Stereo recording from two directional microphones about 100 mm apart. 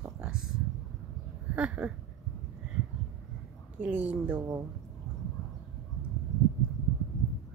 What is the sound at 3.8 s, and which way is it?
Speech, 15° right (ahead or behind).